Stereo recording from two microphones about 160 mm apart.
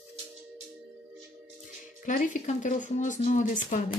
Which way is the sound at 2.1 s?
55° left (ahead or behind).